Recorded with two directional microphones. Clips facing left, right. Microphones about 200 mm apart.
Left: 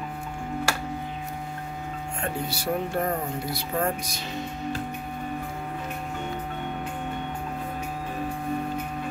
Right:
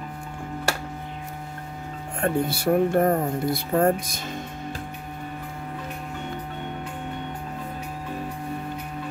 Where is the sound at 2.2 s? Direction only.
55° right (ahead or behind).